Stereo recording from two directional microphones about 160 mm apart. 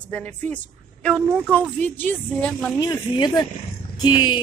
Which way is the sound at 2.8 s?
25° left (ahead or behind).